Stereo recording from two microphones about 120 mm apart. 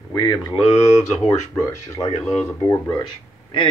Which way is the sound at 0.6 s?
65° left (ahead or behind).